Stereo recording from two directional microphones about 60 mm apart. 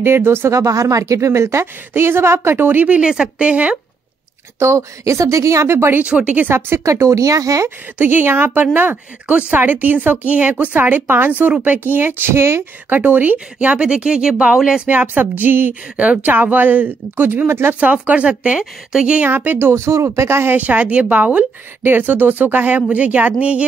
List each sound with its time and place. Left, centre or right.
0.0 s speech: right
0.5 s a woman's voice: right
3.0 s a woman's voice: centre
4.6 s a woman's voice: right
5.9 s a woman's voice: right
6.5 s a woman's voice: right
8.0 s a woman's voice: right
12.9 s speech: right
13.7 s speech: centre
14.9 s speech: right
17.7 s a woman's voice: right
19.1 s speech: right
19.7 s a woman's voice: right
20.5 s a woman's voice: right